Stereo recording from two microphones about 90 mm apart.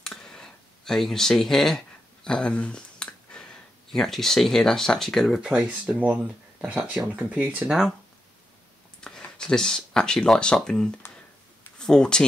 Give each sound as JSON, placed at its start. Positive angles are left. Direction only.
{"t": 0.0, "sound": "a sound", "side_deg": 10}
{"t": 2.2, "sound": "speech", "side_deg": 10}
{"t": 5.4, "sound": "speech", "side_deg": -10}
{"t": 9.0, "sound": "speech", "side_deg": 10}